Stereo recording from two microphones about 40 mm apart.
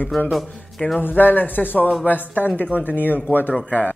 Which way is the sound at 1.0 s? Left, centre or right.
Left.